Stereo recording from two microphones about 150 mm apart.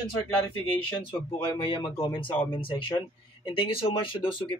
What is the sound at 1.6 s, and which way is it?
Speech, 35° left (ahead or behind).